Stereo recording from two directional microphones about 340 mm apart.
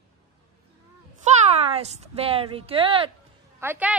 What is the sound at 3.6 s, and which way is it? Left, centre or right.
Speech, centre.